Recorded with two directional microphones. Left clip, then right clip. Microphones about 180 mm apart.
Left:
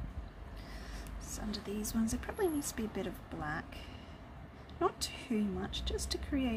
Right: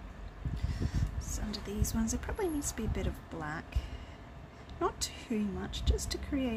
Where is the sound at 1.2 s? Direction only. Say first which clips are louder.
Left 1 dB; centre (ahead or behind).